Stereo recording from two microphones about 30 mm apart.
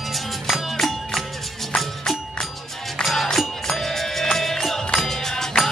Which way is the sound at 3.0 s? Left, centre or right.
Centre.